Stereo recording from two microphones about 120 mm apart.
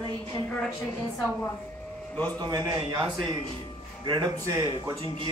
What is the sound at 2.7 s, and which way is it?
Speech, 40° right (ahead or behind).